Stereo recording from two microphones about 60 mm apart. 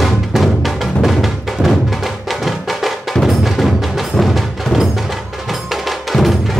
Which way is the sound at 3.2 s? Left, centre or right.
Centre.